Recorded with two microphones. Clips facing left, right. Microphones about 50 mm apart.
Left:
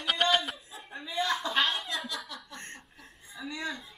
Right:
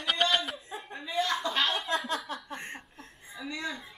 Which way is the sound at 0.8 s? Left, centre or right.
Centre.